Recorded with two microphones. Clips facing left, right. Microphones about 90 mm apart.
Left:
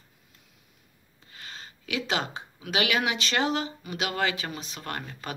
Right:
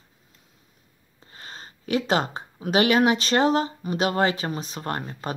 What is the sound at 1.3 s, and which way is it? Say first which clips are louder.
Speech: right 2 dB; 35° right (ahead or behind).